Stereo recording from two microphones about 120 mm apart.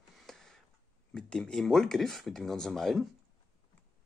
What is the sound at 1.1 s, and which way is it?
Speech, 5° left (ahead or behind).